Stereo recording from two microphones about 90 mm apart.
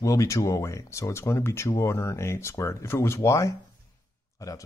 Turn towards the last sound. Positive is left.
turn(degrees=40)  # may be behind; listen again after turning